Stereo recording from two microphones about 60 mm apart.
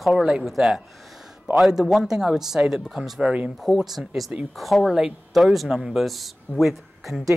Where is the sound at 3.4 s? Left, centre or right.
Centre.